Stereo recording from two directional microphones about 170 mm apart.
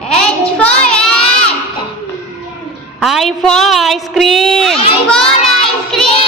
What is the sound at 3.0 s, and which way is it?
A woman's voice, centre (ahead or behind).